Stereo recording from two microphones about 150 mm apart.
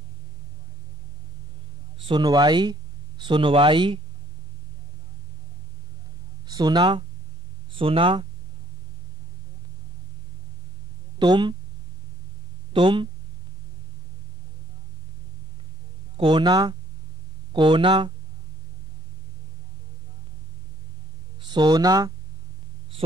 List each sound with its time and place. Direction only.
2.0 s speech: 30° right (ahead or behind)
6.4 s speech: 30° right (ahead or behind)
11.1 s speech: 30° right (ahead or behind)
12.7 s speech: 35° right (ahead or behind)
16.2 s speech: 35° right (ahead or behind)
21.4 s speech: 30° right (ahead or behind)